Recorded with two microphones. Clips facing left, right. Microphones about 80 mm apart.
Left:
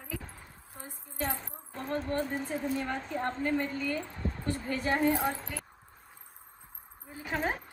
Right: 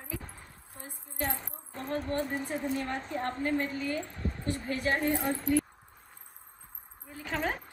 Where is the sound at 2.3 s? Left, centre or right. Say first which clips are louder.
Even; centre.